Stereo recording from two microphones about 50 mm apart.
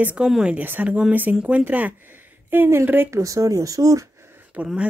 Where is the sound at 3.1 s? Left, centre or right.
Right.